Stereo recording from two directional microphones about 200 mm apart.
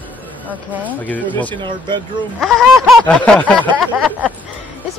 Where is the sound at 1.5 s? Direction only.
25° right (ahead or behind).